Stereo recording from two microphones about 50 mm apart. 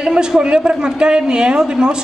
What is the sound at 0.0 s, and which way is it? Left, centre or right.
A woman's voice, centre.